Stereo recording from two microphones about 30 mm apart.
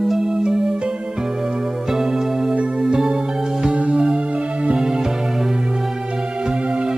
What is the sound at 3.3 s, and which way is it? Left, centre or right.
Music, centre.